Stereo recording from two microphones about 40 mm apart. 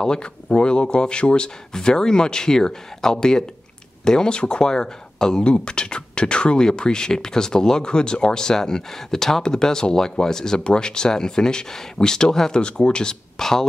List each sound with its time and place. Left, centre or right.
0.0 s speech: centre
13.4 s speech: centre